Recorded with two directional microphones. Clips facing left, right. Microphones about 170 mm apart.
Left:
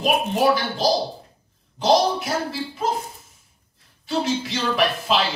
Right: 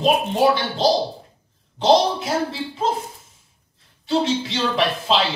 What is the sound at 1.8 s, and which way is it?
A man's voice, 25° right (ahead or behind).